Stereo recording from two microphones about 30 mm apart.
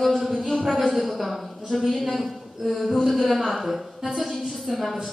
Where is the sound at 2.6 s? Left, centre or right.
Centre.